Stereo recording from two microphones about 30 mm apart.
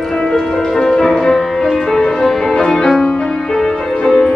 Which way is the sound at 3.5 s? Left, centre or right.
Left.